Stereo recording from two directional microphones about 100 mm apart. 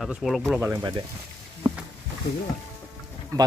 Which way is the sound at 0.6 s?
30° right (ahead or behind).